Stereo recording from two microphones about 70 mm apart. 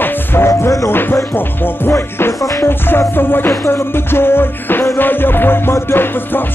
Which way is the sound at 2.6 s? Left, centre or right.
Left.